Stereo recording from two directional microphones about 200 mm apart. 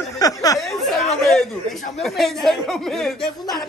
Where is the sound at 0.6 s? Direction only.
Centre (ahead or behind).